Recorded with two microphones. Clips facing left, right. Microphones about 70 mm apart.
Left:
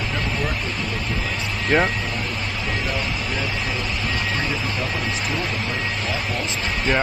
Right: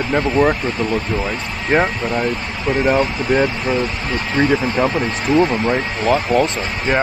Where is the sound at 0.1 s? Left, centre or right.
Right.